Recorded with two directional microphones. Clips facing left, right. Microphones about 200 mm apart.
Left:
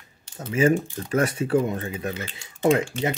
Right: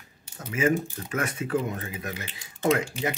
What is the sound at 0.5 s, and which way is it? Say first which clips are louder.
Speech: left 4 dB; 30° left (ahead or behind).